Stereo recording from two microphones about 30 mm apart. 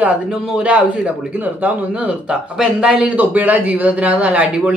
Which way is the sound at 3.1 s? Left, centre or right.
Right.